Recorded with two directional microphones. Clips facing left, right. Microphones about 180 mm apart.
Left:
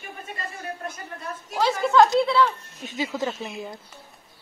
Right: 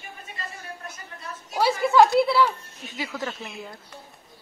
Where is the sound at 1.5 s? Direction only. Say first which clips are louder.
Even; 10° right (ahead or behind).